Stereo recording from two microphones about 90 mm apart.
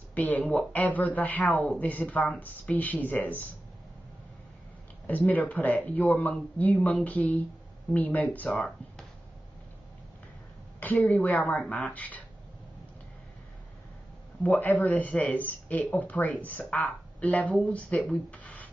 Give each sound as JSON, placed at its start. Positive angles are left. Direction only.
{"t": 0.1, "sound": "speech", "side_deg": 20}
{"t": 5.0, "sound": "speech", "side_deg": 20}
{"t": 8.5, "sound": "speech", "side_deg": 5}
{"t": 10.8, "sound": "speech", "side_deg": 20}
{"t": 14.4, "sound": "speech", "side_deg": 20}
{"t": 18.3, "sound": "a sound", "side_deg": 15}